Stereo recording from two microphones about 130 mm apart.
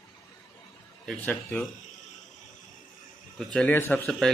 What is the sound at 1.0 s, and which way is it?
Speech, 10° left (ahead or behind).